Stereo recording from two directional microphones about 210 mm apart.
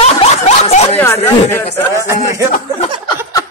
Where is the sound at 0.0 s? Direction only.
30° left (ahead or behind).